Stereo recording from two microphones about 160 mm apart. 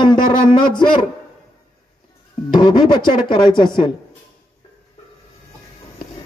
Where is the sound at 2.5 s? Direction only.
30° left (ahead or behind).